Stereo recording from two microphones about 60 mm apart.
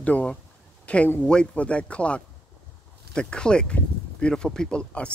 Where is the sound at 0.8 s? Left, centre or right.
Left.